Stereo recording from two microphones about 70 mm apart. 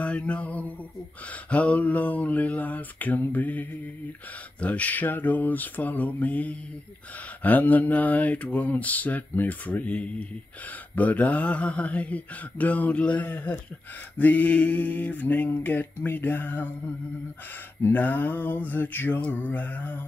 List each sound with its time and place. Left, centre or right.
0.0 s mantra: centre
17.9 s mantra: left